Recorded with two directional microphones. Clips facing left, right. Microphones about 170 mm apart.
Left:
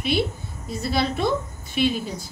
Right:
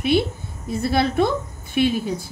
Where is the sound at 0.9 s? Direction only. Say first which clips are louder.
Right 4 dB; 55° right (ahead or behind).